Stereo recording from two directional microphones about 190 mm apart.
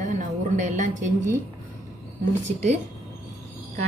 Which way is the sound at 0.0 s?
40° right (ahead or behind).